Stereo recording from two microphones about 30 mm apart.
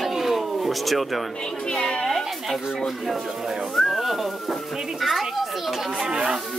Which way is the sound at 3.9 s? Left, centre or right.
Centre.